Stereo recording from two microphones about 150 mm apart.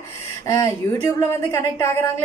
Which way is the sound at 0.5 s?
20° left (ahead or behind).